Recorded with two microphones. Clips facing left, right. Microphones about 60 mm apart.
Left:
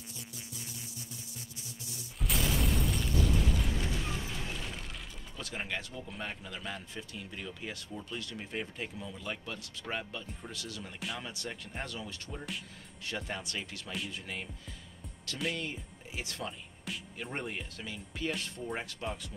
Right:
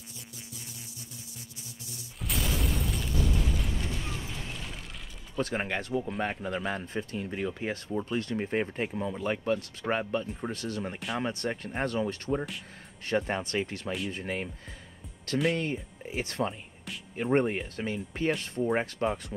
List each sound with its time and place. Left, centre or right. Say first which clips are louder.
2.2 s explosion: even; centre
5.4 s a man's voice: right 8 dB; right
15.5 s speech: right 7 dB; right